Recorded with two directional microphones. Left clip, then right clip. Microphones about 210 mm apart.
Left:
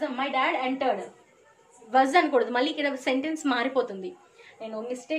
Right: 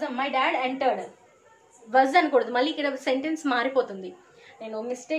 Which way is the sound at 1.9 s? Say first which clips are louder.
Right 1 dB; 15° left (ahead or behind).